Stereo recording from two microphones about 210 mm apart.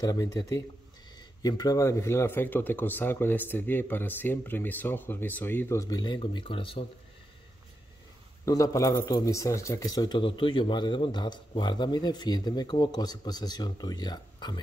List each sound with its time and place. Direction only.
0.0 s a man's voice: 20° left (ahead or behind)
8.5 s a man's voice: 15° left (ahead or behind)